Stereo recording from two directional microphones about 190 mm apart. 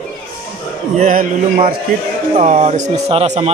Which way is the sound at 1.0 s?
45° right (ahead or behind).